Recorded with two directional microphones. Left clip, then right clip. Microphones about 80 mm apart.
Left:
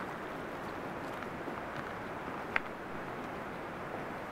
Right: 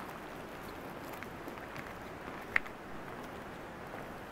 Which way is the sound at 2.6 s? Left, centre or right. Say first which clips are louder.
Right 2 dB; right.